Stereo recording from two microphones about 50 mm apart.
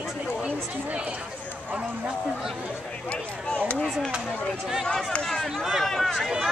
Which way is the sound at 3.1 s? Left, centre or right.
Left.